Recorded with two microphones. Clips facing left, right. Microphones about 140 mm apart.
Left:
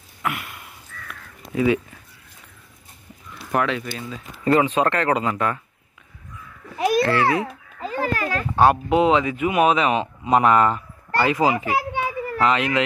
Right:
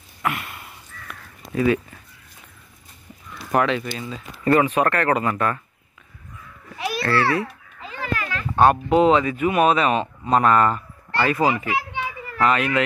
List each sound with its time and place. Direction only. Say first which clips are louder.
0.2 s a sound: right 2 dB; centre (ahead or behind)
1.5 s speech: even; 15° left (ahead or behind)
3.5 s speech: right 2 dB; centre (ahead or behind)
4.5 s speech: even; 20° left (ahead or behind)
7.0 s a child's voice: even; 20° left (ahead or behind)
7.4 s a sound: left 6 dB; 40° left (ahead or behind)
8.5 s speech: right 1 dB; 5° left (ahead or behind)
11.6 s children playing: left 3 dB; 40° left (ahead or behind)
12.4 s a child's voice: right 1 dB; 20° left (ahead or behind)